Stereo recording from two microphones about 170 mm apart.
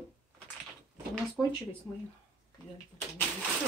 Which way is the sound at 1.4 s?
10° left (ahead or behind).